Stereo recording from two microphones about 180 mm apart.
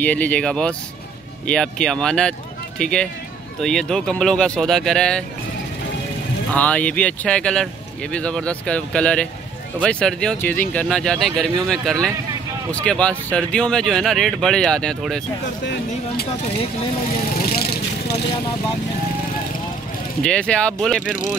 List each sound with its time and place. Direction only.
0.0 s speech: 10° left (ahead or behind)
6.5 s speech: 10° left (ahead or behind)
15.6 s speech: 65° left (ahead or behind)
17.4 s vehicle: 60° left (ahead or behind)
20.2 s speech: 5° left (ahead or behind)